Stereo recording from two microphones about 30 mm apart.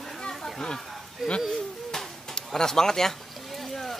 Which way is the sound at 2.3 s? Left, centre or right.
Centre.